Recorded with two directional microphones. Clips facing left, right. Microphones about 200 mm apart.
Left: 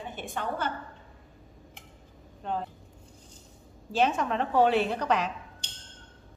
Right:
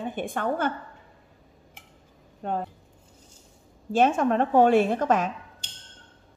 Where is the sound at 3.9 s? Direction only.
50° right (ahead or behind).